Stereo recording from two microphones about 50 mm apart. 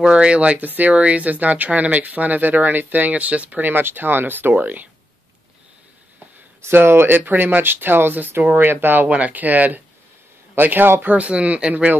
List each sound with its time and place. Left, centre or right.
0.0 s speech: right
0.6 s speech: right
6.6 s speech: right
9.1 s speech: right
11.1 s speech: right